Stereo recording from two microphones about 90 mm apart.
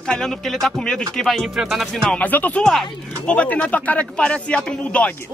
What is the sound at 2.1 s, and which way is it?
Speech, 20° left (ahead or behind).